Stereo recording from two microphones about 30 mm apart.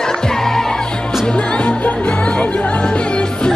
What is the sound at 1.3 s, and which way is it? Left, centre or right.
Music, left.